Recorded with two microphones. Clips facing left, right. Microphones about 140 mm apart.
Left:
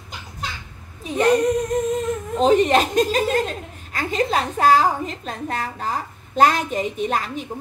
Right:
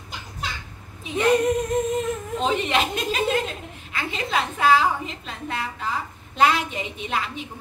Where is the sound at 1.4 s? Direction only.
Centre (ahead or behind).